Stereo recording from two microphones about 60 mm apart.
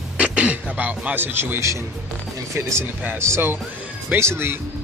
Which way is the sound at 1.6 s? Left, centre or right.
Right.